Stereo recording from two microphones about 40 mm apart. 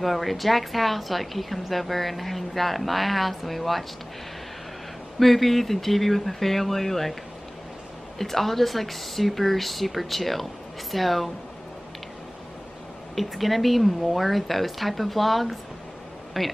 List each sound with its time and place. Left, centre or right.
0.0 s speech: centre
5.2 s speech: centre
8.2 s speech: centre
13.1 s speech: centre